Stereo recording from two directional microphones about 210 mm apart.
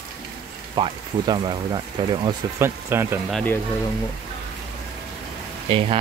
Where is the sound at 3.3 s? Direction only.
10° left (ahead or behind).